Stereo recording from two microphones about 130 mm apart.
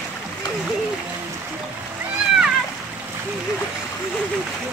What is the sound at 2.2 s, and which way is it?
Splash, 5° right (ahead or behind).